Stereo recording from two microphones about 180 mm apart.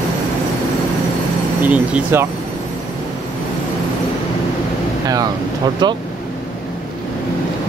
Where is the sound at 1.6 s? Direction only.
10° right (ahead or behind).